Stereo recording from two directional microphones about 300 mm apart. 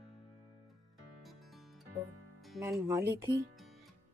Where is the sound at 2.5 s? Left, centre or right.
Centre.